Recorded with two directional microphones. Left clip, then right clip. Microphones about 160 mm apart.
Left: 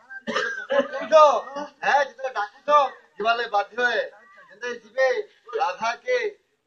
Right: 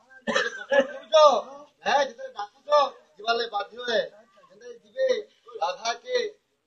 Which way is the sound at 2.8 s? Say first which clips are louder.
Left 2 dB; 15° right (ahead or behind).